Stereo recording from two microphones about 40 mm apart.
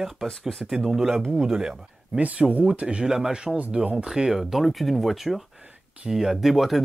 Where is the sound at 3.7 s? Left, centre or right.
Right.